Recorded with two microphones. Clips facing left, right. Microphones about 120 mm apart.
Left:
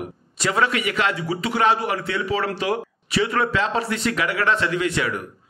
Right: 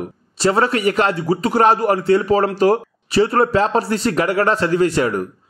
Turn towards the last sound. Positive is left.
turn(degrees=-40)  # may be behind; listen again after turning